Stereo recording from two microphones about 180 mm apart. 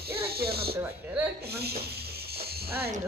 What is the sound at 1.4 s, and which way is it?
Music, 60° right (ahead or behind).